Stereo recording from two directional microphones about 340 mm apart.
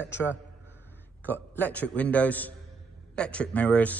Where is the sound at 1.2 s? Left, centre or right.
Centre.